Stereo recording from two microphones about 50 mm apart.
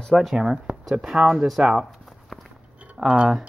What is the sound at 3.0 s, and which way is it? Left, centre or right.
Speech, right.